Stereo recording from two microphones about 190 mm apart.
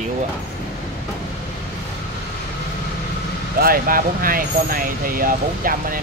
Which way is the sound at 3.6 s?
50° right (ahead or behind).